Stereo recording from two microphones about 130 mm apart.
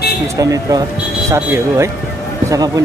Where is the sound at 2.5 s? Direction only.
30° right (ahead or behind).